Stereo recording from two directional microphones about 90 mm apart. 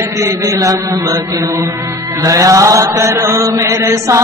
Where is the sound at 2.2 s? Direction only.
35° right (ahead or behind).